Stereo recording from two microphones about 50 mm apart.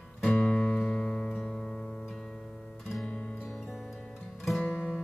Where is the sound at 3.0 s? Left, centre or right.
Left.